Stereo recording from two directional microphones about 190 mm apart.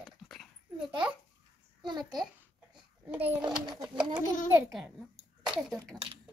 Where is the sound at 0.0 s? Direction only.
Centre (ahead or behind).